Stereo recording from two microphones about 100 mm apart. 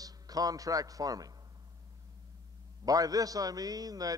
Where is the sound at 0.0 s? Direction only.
40° right (ahead or behind).